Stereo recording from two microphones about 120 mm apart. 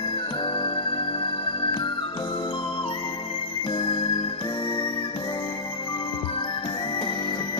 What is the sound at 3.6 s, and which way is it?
Music, 45° left (ahead or behind).